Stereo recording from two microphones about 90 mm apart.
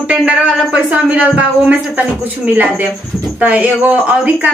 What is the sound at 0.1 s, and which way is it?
Speech, 15° right (ahead or behind).